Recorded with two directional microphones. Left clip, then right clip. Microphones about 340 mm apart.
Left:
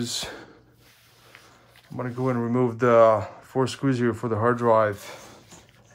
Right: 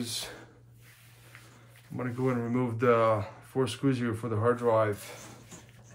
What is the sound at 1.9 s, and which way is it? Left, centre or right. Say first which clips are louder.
Speech: left 4 dB; centre.